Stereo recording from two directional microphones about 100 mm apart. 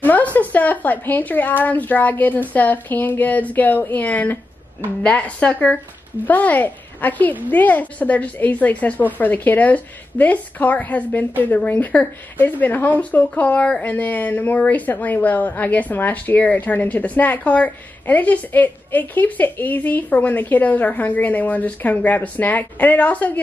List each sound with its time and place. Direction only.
0.0 s a woman's voice: 15° left (ahead or behind)